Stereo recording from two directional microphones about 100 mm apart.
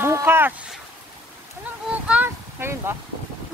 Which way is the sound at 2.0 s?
20° right (ahead or behind).